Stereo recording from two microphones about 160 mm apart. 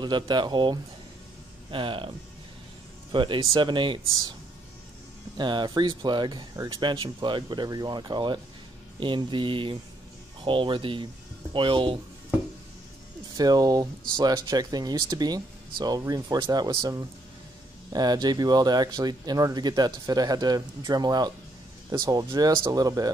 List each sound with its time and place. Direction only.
0.0 s speech: 30° right (ahead or behind)
3.1 s speech: 30° right (ahead or behind)
5.4 s speech: 30° right (ahead or behind)
13.4 s speech: 25° right (ahead or behind)